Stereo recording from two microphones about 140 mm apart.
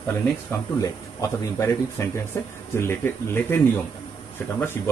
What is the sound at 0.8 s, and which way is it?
Speech, 20° left (ahead or behind).